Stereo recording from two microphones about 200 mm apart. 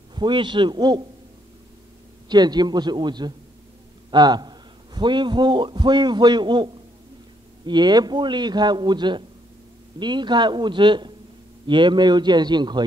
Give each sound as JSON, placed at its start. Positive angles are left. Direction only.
{"t": 0.1, "sound": "a man's voice", "side_deg": -25}
{"t": 2.2, "sound": "a man's voice", "side_deg": -20}